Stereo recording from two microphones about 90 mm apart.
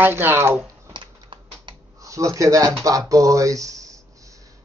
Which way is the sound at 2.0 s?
35° right (ahead or behind).